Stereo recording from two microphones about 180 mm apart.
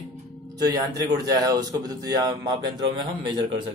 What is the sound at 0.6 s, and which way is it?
Speech, 20° right (ahead or behind).